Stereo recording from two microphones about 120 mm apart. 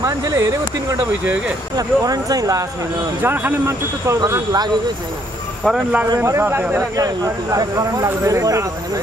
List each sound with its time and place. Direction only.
0.0 s speech: 30° right (ahead or behind)
3.2 s speech: 15° right (ahead or behind)
4.2 s speech: 35° right (ahead or behind)
5.6 s speech: centre (ahead or behind)
6.0 s speech: 25° right (ahead or behind)
7.0 s speech: 30° right (ahead or behind)